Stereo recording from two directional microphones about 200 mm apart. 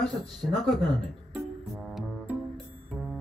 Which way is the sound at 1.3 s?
5° right (ahead or behind).